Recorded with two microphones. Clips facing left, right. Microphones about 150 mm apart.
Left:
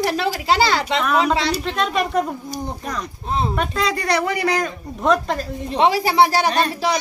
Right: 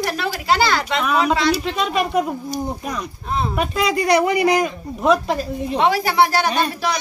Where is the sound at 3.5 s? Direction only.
10° right (ahead or behind).